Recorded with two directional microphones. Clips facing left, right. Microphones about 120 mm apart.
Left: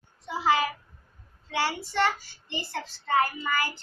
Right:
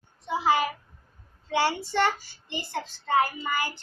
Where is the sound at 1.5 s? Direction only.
25° right (ahead or behind).